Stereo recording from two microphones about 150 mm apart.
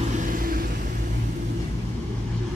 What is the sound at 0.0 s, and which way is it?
Vehicle, 55° right (ahead or behind).